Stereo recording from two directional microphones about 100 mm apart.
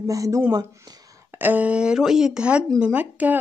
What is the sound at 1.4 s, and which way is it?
Speech, 15° right (ahead or behind).